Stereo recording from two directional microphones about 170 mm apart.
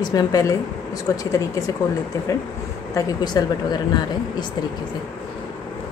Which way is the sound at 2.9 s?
25° left (ahead or behind).